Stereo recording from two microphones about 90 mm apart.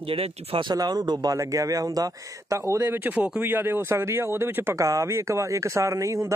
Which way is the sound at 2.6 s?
25° right (ahead or behind).